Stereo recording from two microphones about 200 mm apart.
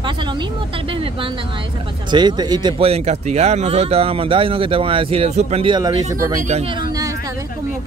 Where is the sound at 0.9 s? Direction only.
25° right (ahead or behind).